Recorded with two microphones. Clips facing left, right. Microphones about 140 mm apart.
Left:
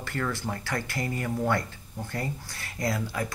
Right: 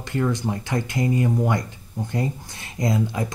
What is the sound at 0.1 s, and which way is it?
Speech, 20° right (ahead or behind).